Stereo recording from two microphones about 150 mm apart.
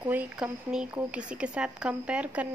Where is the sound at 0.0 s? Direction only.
10° right (ahead or behind).